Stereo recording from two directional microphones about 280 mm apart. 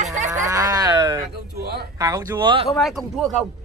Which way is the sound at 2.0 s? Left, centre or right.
Centre.